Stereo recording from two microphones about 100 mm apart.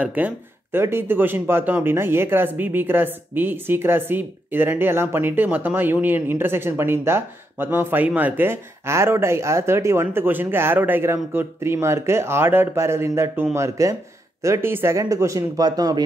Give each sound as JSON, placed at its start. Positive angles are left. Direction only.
{"t": 0.0, "sound": "speech", "side_deg": -15}